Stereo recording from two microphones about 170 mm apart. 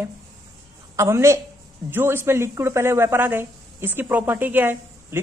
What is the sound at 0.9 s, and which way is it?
Speech, 15° right (ahead or behind).